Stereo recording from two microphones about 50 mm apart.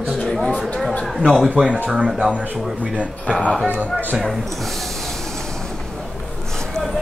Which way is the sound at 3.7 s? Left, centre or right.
Right.